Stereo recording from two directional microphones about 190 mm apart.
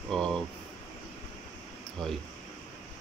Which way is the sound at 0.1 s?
Centre (ahead or behind).